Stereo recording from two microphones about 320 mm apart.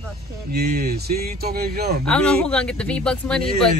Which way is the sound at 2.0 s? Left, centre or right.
Centre.